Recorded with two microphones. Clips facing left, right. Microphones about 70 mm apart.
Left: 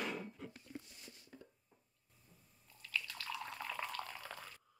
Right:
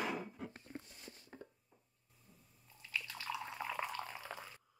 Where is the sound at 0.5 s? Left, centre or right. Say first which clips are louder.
Right 1 dB; right.